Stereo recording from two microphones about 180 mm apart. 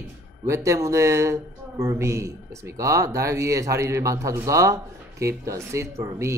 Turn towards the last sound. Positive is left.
turn(degrees=-15)  # may be behind; listen again after turning